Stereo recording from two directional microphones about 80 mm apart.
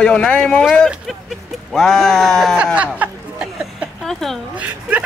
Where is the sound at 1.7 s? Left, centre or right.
Centre.